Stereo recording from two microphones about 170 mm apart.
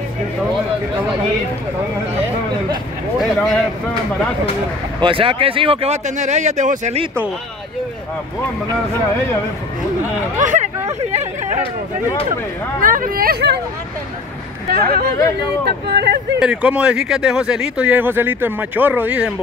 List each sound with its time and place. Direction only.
3.2 s speech: centre (ahead or behind)
5.0 s speech: 30° right (ahead or behind)
10.4 s speech: 45° right (ahead or behind)
12.8 s speech: 55° right (ahead or behind)
14.7 s speech: 65° right (ahead or behind)
16.3 s speech: 5° right (ahead or behind)